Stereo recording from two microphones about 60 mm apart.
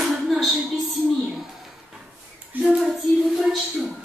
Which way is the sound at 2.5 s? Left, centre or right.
Right.